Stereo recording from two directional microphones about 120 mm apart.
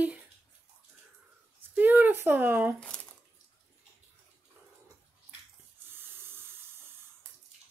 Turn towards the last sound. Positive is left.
turn(degrees=-20)  # may be behind; listen again after turning